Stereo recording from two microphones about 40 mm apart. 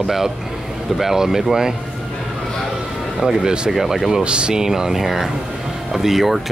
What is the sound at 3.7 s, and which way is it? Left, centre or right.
Speech, centre.